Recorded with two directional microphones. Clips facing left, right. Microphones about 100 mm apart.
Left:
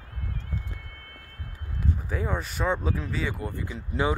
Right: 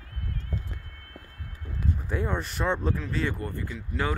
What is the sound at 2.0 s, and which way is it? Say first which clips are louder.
Speech: right 2 dB; 5° left (ahead or behind).